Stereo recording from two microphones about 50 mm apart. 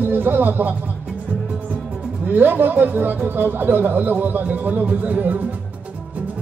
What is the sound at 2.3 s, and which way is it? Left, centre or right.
Speech, right.